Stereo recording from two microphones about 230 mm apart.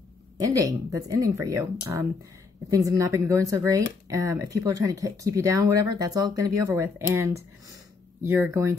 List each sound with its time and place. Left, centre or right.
0.5 s speech: centre